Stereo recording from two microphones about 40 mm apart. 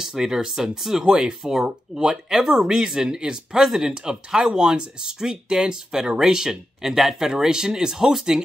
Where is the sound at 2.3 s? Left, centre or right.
Centre.